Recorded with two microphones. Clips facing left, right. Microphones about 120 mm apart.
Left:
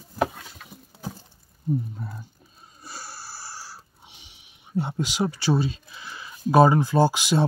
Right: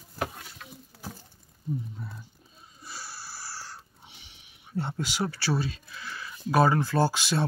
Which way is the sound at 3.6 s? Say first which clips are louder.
Left 1 dB; 15° left (ahead or behind).